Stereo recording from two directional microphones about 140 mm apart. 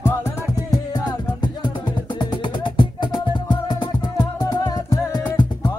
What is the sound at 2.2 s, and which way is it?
Music, 35° left (ahead or behind).